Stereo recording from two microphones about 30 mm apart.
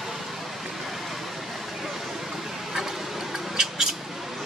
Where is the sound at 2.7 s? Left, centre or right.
Centre.